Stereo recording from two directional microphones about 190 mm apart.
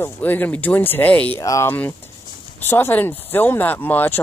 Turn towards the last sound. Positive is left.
turn(degrees=10)  # may be behind; listen again after turning